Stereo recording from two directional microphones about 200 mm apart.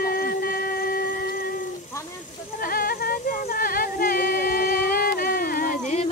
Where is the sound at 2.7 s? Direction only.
45° left (ahead or behind).